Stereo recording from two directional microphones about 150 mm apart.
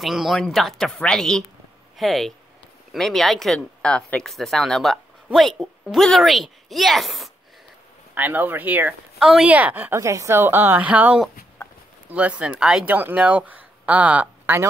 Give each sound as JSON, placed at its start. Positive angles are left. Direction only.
{"t": 0.0, "sound": "speech", "side_deg": 0}
{"t": 8.1, "sound": "speech", "side_deg": -10}
{"t": 11.6, "sound": "a sound", "side_deg": 20}
{"t": 12.1, "sound": "speech", "side_deg": -10}